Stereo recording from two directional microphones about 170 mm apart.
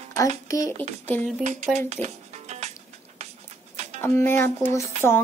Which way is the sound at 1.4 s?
45° right (ahead or behind).